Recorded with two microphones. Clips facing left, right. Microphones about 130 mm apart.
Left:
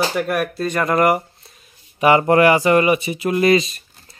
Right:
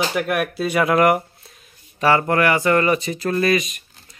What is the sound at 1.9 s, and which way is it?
Speech, 20° left (ahead or behind).